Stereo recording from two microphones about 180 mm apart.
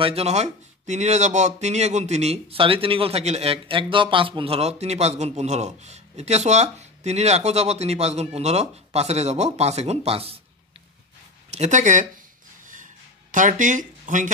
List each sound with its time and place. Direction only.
0.0 s speech: 35° right (ahead or behind)
11.5 s speech: 40° right (ahead or behind)
12.6 s a sound: 45° right (ahead or behind)